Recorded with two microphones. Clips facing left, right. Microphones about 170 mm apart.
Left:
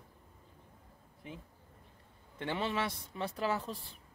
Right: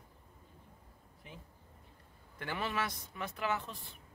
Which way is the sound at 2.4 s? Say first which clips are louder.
Left 3 dB; 25° left (ahead or behind).